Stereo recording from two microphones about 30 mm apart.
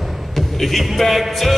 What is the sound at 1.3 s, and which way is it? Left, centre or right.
Music, centre.